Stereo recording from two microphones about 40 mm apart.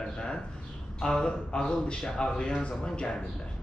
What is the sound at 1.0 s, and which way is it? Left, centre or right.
Speech, centre.